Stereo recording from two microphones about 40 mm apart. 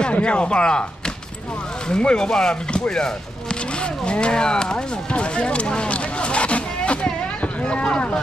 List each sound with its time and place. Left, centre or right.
0.0 s speech: left